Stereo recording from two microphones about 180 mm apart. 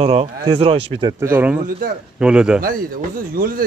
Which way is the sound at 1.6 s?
55° right (ahead or behind).